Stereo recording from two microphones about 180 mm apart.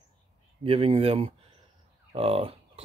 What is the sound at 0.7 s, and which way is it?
Speech, 30° right (ahead or behind).